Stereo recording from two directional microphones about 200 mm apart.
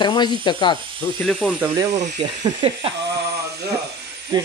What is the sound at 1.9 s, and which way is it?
Speech, 35° right (ahead or behind).